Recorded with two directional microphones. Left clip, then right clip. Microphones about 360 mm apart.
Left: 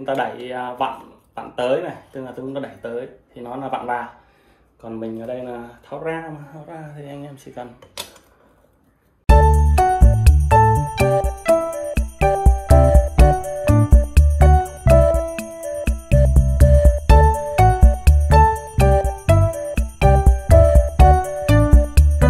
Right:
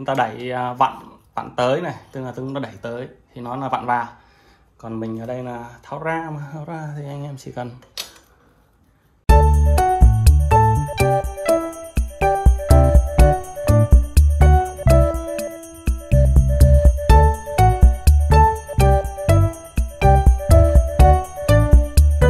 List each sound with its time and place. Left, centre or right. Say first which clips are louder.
0.0 s speech: right 2 dB; centre
1.7 s speech: even; centre
5.9 s speech: right 2 dB; centre
9.2 s music: left 2 dB; centre